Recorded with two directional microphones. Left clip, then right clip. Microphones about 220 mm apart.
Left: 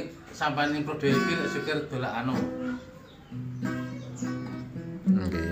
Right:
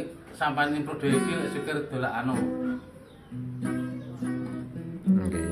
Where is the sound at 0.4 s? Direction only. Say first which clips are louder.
Right 1 dB; centre (ahead or behind).